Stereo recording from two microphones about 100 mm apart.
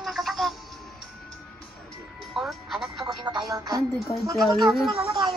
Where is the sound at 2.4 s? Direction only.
Centre (ahead or behind).